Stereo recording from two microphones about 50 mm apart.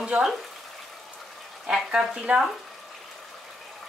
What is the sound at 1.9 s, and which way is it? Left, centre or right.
Speech, centre.